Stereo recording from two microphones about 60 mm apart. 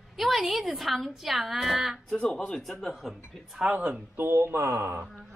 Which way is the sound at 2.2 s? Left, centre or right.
Centre.